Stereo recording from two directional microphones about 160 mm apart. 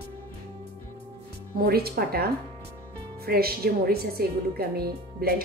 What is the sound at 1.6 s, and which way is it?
A woman's voice, 75° right (ahead or behind).